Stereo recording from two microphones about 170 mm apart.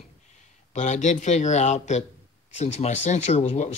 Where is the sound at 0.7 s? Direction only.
45° left (ahead or behind).